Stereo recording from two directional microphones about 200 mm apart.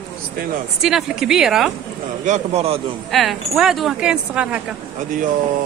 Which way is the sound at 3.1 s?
Centre (ahead or behind).